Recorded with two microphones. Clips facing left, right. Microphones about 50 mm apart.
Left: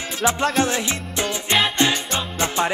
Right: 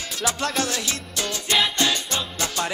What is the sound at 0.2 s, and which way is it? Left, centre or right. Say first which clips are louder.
Music: left 5 dB; left.